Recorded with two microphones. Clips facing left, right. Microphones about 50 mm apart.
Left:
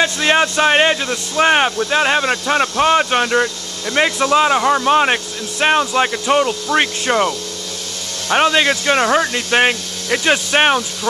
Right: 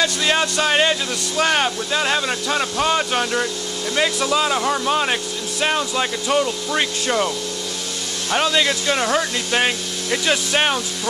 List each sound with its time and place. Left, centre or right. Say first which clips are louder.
0.0 s speech: left 4 dB; left